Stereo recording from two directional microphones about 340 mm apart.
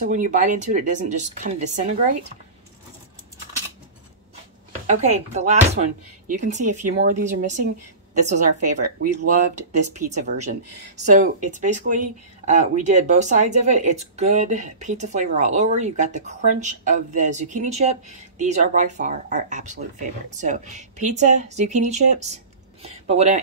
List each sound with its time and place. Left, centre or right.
0.0 s speech: right
4.8 s a woman's voice: centre
9.7 s speech: centre